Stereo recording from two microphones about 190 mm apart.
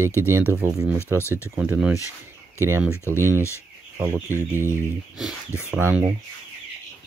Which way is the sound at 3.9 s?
10° right (ahead or behind).